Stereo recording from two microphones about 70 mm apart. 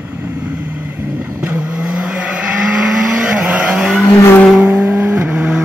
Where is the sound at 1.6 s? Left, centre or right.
Centre.